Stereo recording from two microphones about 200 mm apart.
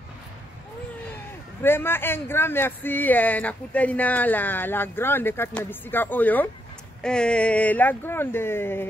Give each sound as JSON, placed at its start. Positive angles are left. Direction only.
{"t": 1.1, "sound": "speech", "side_deg": 10}